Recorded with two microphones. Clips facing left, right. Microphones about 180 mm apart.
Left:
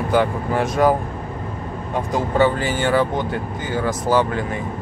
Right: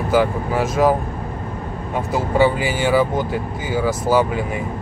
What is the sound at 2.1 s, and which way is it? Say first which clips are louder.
Speech: right 1 dB; 5° right (ahead or behind).